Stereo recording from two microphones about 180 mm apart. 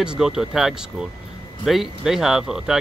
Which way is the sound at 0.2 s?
Centre (ahead or behind).